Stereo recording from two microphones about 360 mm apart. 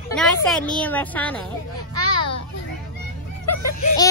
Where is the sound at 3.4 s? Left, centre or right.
Left.